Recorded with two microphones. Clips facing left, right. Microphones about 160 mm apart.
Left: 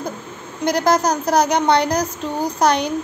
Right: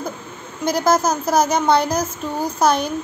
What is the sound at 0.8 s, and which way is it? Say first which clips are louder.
Speech: even; 15° left (ahead or behind).